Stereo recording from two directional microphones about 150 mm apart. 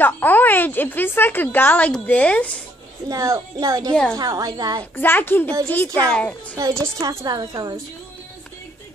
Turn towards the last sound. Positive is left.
turn(degrees=-25)  # may be behind; listen again after turning